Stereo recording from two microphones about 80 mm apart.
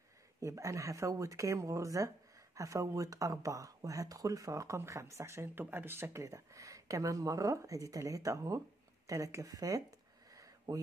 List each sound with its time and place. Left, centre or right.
0.4 s speech: right